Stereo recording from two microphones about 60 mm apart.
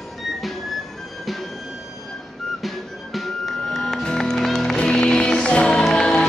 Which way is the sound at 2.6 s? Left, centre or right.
Centre.